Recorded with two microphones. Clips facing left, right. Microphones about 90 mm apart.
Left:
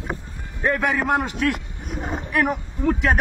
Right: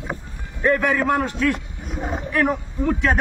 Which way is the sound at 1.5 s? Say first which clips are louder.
Right 1 dB; centre (ahead or behind).